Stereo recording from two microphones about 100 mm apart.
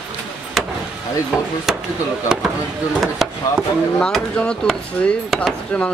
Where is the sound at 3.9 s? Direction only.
10° left (ahead or behind).